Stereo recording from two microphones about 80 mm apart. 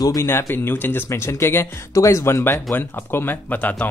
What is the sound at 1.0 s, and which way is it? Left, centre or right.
Speech, left.